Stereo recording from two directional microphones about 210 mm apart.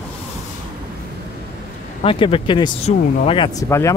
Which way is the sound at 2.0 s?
25° left (ahead or behind).